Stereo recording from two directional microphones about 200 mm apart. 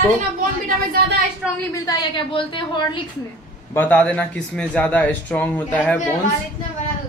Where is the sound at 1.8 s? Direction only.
25° left (ahead or behind).